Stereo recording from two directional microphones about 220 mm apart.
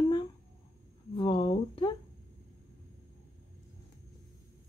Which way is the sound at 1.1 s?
20° left (ahead or behind).